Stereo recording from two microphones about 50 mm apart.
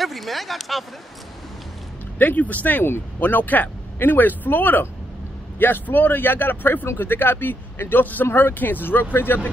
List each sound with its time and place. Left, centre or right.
0.0 s speech: centre
2.1 s a man's voice: left